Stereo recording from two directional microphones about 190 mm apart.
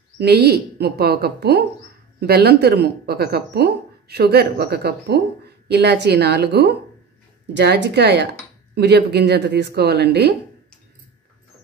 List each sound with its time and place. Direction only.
0.2 s a woman's voice: 60° right (ahead or behind)